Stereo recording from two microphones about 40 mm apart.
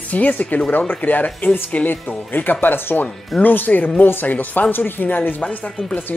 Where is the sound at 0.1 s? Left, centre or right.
Left.